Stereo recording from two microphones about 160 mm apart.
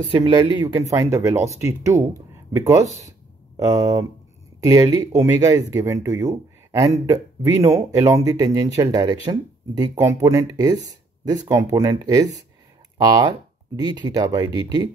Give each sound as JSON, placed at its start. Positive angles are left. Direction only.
{"t": 0.1, "sound": "speech", "side_deg": -30}
{"t": 0.9, "sound": "speech", "side_deg": -20}